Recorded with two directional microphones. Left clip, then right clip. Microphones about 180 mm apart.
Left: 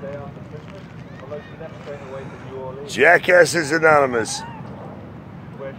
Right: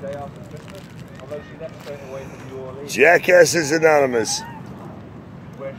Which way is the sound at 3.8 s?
55° right (ahead or behind).